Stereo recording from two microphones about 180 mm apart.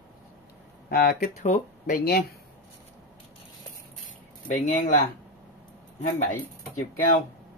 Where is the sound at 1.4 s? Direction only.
40° left (ahead or behind).